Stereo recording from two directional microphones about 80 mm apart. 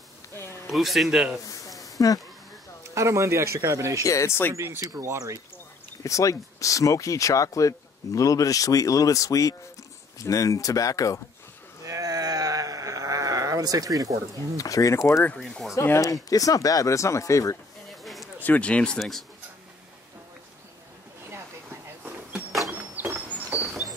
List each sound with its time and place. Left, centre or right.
0.7 s a man's voice: centre
1.4 s a sound: left
2.9 s speech: right
4.0 s speech: left
4.6 s speech: right
6.0 s speech: left
11.8 s a sound: right
14.6 s speech: left
15.3 s a man's voice: centre
15.7 s speech: left
18.0 s a sound: centre
18.4 s speech: centre
18.9 s a man's voice: centre
22.0 s a sound: right